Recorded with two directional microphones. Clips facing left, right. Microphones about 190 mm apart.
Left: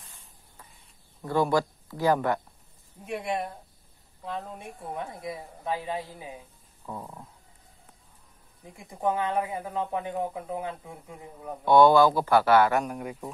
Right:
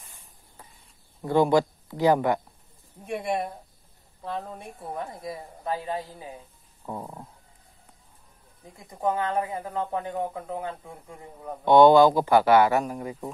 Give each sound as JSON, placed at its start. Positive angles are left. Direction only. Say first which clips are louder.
{"t": 1.2, "sound": "speech", "louder": "right 4 dB", "side_deg": -20}
{"t": 4.6, "sound": "speech", "louder": "right 1 dB", "side_deg": 10}
{"t": 6.9, "sound": "stomach rumble", "louder": "right 3 dB", "side_deg": -25}
{"t": 8.7, "sound": "speech", "louder": "right 1 dB", "side_deg": 10}
{"t": 11.6, "sound": "speech", "louder": "right 3 dB", "side_deg": -20}
{"t": 12.8, "sound": "speech", "louder": "right 2 dB", "side_deg": 0}